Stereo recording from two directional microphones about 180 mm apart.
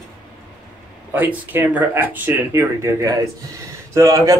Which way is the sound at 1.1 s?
10° right (ahead or behind).